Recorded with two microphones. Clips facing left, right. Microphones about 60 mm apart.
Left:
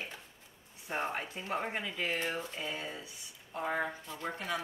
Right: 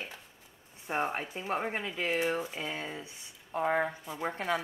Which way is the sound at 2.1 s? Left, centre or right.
Right.